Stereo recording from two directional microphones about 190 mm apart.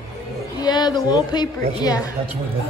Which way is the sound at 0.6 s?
20° left (ahead or behind).